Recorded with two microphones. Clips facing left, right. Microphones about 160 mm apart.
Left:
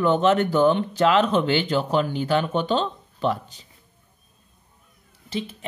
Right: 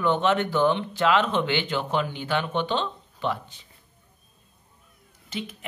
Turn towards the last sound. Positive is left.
turn(degrees=30)  # may be behind; listen again after turning